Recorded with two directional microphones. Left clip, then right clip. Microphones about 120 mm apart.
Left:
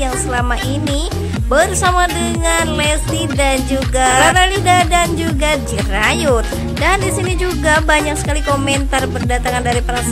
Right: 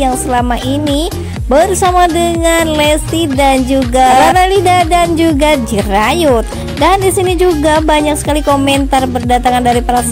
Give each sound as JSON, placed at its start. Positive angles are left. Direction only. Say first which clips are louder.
{"t": 0.0, "sound": "music", "louder": "right 6 dB", "side_deg": -30}